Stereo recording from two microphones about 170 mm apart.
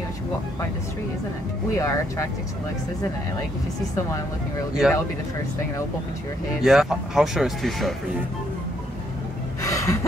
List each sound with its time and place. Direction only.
1.8 s speech: 15° left (ahead or behind)
4.8 s speech: centre (ahead or behind)
6.6 s speech: centre (ahead or behind)
9.6 s gasp: 20° left (ahead or behind)